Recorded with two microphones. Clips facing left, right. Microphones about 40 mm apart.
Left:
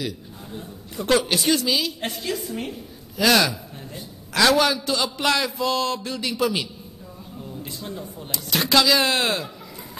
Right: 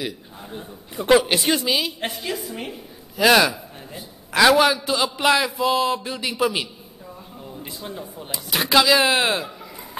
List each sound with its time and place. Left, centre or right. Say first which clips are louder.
0.0 s a man's voice: even; right
2.0 s a woman's voice: even; centre